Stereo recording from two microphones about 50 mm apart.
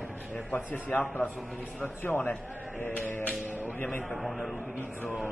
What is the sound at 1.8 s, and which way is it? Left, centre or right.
Speech, left.